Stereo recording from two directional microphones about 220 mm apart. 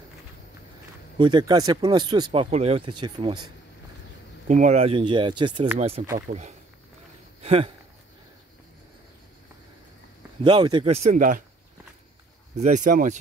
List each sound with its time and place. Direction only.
1.1 s speech: 20° right (ahead or behind)
4.5 s speech: 30° right (ahead or behind)
6.3 s speech: 40° right (ahead or behind)
7.4 s speech: 25° right (ahead or behind)
10.4 s speech: 20° right (ahead or behind); by 11.4 s 35° right (ahead or behind)
12.5 s speech: 35° right (ahead or behind)